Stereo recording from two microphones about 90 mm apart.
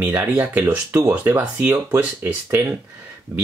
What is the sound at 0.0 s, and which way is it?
Speech, 20° right (ahead or behind).